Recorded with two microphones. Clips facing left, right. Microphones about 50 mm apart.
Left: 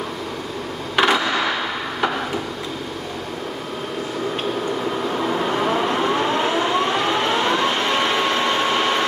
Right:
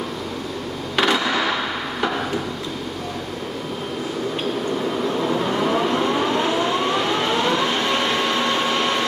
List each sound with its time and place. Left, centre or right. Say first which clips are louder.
0.9 s a sound: left 2 dB; centre
5.1 s train: even; centre
6.2 s siren: even; centre